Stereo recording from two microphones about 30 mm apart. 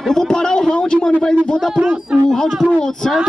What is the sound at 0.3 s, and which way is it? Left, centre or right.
Speech, left.